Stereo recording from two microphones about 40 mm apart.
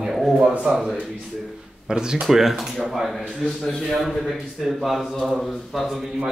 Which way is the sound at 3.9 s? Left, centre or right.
Centre.